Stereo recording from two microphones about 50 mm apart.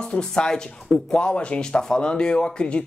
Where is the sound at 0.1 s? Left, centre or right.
Centre.